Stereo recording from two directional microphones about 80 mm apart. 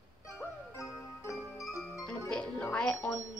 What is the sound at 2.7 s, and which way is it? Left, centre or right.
Speech, centre.